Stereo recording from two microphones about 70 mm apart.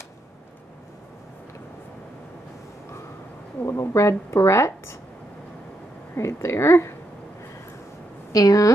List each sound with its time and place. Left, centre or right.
3.6 s a woman's voice: left
6.1 s a woman's voice: left
8.3 s a woman's voice: left